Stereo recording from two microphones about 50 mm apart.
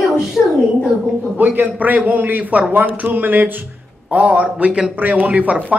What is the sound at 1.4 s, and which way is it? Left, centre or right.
A man's voice, right.